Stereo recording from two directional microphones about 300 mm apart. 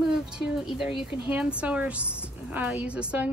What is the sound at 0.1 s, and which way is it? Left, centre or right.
A woman's voice, centre.